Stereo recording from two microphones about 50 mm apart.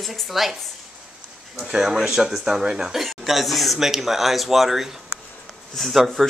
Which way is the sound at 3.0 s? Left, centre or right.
Centre.